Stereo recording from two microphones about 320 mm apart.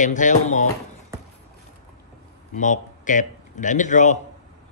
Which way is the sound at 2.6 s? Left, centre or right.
Left.